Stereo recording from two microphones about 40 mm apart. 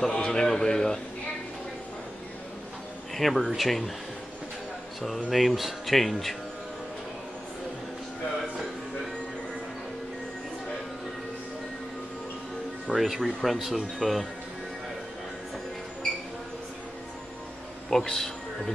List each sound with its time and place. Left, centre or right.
0.1 s a sound: left
3.2 s speech: centre
5.3 s speech: centre
12.9 s speech: centre
17.8 s speech: centre